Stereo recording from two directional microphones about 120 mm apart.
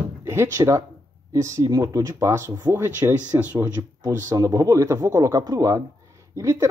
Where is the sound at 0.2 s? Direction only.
20° right (ahead or behind).